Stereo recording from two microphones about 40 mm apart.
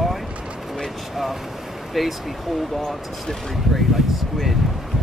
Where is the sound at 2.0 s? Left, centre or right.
Centre.